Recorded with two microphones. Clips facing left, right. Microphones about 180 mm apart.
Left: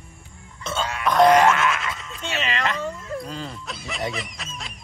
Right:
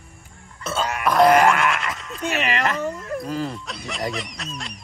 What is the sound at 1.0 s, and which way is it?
Boing, 5° right (ahead or behind).